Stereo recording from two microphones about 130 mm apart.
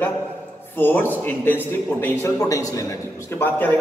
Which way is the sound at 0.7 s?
15° left (ahead or behind).